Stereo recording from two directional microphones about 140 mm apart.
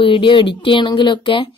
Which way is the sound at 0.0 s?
35° left (ahead or behind).